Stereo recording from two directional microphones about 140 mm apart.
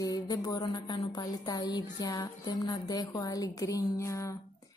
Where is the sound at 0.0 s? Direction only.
30° left (ahead or behind).